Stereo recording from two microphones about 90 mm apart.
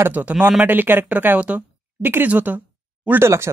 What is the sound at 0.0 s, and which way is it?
Speech, 20° right (ahead or behind).